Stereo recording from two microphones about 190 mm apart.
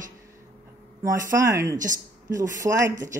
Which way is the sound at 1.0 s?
15° right (ahead or behind).